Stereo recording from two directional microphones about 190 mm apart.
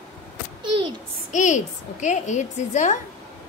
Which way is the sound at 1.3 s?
40° left (ahead or behind).